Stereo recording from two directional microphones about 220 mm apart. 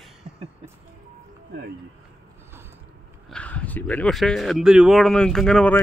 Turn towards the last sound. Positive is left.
turn(degrees=5)  # may be behind; listen again after turning